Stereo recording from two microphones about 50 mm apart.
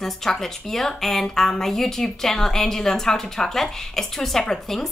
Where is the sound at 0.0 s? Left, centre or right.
Centre.